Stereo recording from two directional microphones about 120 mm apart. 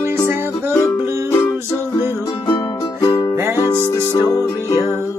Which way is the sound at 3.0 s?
25° left (ahead or behind).